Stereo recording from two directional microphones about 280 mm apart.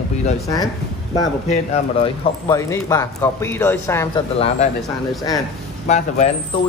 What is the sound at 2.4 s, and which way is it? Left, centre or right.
Speech, centre.